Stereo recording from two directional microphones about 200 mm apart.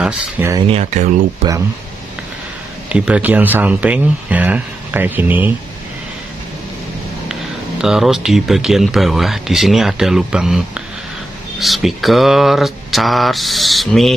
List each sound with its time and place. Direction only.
0.0 s speech: 15° right (ahead or behind)
0.7 s speech: 35° right (ahead or behind)
2.9 s speech: 5° right (ahead or behind)
7.8 s speech: 5° right (ahead or behind)
11.6 s speech: centre (ahead or behind)